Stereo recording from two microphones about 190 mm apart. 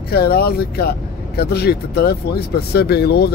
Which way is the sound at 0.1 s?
55° left (ahead or behind).